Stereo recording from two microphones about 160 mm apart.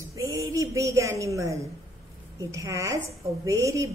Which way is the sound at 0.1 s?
20° right (ahead or behind).